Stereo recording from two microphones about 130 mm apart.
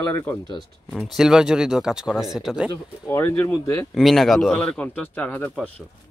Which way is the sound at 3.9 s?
Centre (ahead or behind).